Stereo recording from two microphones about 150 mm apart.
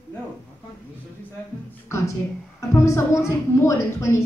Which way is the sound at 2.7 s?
20° left (ahead or behind).